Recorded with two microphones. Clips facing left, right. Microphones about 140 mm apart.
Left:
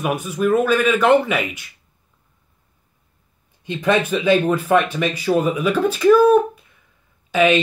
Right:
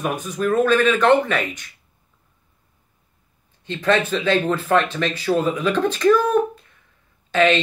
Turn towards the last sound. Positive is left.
turn(degrees=10)  # may be behind; listen again after turning